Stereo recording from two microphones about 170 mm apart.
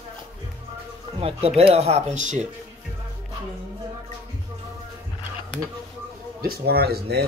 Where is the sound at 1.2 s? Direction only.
35° right (ahead or behind).